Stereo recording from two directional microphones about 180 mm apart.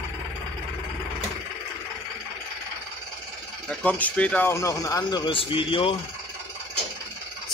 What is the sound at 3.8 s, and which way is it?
A man's voice, 5° left (ahead or behind).